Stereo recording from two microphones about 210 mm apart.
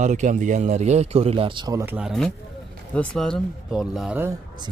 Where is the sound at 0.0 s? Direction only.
35° right (ahead or behind); by 4.3 s 5° right (ahead or behind).